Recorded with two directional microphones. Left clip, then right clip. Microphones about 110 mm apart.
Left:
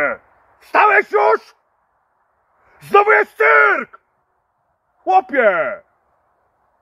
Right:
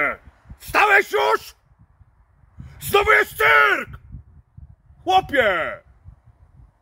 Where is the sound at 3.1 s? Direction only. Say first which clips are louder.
Left 3 dB; 15° right (ahead or behind).